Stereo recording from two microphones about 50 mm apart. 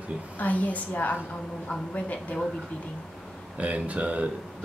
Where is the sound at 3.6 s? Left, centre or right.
Right.